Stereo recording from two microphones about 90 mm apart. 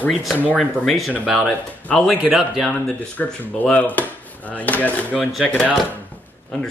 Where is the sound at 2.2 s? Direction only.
10° right (ahead or behind).